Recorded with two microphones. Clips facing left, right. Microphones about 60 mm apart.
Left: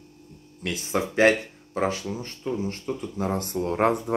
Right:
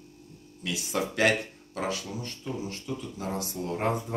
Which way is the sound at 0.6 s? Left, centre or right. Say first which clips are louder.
Left 3 dB; left.